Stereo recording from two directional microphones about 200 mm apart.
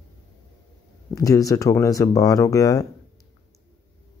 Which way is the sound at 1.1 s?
15° left (ahead or behind).